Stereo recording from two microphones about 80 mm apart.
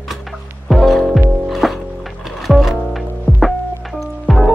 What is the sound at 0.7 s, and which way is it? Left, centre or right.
Music, centre.